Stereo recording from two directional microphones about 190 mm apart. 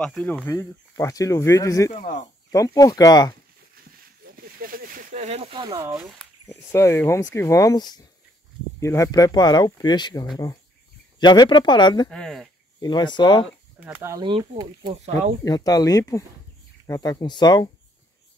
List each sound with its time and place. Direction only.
0.0 s speech: 5° left (ahead or behind)
1.9 s speech: 40° left (ahead or behind)
2.5 s speech: 20° left (ahead or behind)
4.3 s a sound: 50° right (ahead or behind); by 5.8 s 25° right (ahead or behind)
5.8 s speech: 15° right (ahead or behind)
6.4 s speech: 15° left (ahead or behind)
12.1 s speech: centre (ahead or behind)
12.8 s speech: 25° left (ahead or behind)
13.8 s speech: 15° right (ahead or behind)
15.4 s speech: 20° left (ahead or behind)